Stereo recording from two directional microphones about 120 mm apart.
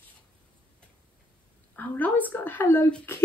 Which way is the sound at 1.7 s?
15° left (ahead or behind).